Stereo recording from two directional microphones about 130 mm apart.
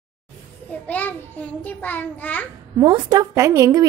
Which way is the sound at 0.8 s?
10° left (ahead or behind).